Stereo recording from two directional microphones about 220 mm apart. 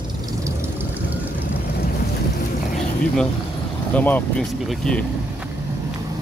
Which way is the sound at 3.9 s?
5° left (ahead or behind).